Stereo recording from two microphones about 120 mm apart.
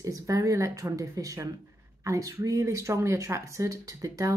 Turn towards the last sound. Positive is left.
turn(degrees=-25)  # may be behind; listen again after turning